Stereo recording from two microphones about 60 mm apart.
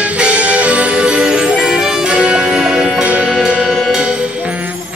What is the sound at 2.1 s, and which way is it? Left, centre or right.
Music, centre.